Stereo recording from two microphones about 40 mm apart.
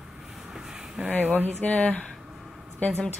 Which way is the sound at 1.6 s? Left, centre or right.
Left.